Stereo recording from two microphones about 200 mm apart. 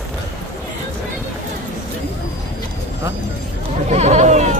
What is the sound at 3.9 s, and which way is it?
Bleat, 35° right (ahead or behind).